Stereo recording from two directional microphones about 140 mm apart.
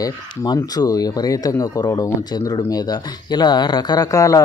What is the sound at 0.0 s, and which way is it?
Speech, 25° left (ahead or behind).